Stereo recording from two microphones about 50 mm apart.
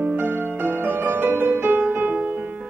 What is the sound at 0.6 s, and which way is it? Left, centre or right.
Music, right.